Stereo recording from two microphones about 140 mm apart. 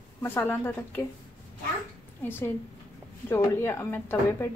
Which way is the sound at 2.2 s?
15° left (ahead or behind).